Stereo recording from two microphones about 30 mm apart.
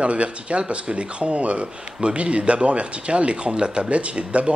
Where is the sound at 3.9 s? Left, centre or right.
Right.